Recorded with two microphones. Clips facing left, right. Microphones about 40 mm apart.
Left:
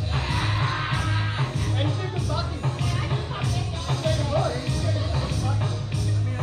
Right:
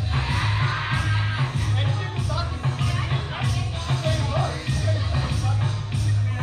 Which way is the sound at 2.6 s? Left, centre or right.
Right.